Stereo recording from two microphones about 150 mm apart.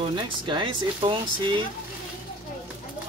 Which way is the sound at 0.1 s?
35° right (ahead or behind).